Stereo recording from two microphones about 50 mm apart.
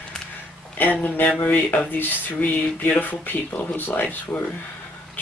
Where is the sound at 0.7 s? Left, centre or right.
Left.